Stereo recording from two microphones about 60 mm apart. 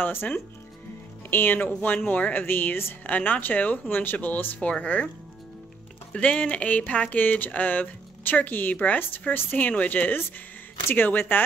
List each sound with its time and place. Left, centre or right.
0.0 s speech: left
6.1 s speech: centre